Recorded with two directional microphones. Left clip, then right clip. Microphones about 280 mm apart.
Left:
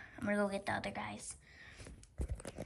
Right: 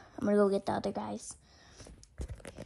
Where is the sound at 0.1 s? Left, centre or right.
Left.